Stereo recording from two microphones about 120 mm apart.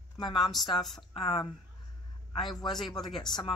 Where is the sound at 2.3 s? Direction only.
40° left (ahead or behind).